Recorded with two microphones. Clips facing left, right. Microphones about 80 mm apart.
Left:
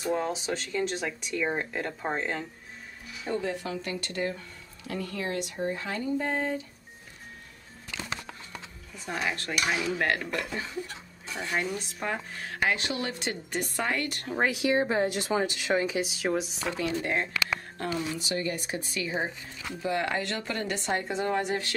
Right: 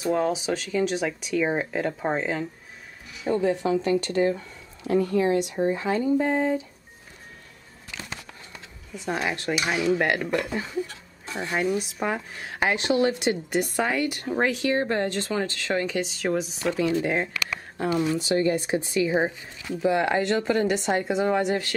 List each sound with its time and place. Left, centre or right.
0.3 s speech: centre
3.6 s speech: right
8.9 s speech: centre
9.7 s speech: centre
9.9 s speech: centre
11.2 s speech: right
11.5 s speech: centre
14.5 s speech: centre
17.8 s speech: right; by 21.5 s centre